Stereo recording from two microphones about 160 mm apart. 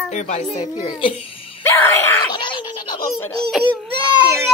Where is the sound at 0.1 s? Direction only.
45° left (ahead or behind).